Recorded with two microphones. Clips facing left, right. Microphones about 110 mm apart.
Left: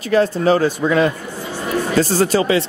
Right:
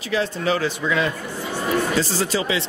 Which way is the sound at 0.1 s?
40° left (ahead or behind).